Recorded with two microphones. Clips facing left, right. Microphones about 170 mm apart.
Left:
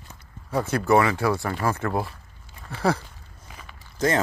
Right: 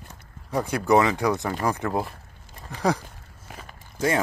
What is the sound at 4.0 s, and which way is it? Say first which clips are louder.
Speech: left 1 dB; 10° right (ahead or behind).